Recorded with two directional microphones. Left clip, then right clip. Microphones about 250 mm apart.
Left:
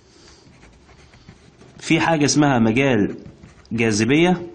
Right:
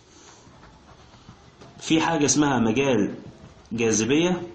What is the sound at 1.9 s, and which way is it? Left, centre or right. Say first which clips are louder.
Speech: left 4 dB; left.